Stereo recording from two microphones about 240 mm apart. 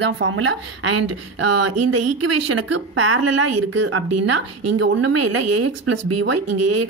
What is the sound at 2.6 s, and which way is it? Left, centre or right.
Speech, right.